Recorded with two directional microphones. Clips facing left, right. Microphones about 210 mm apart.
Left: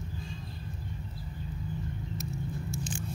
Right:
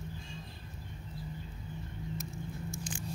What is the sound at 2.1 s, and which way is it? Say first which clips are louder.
Vehicle: left 4 dB; 50° right (ahead or behind).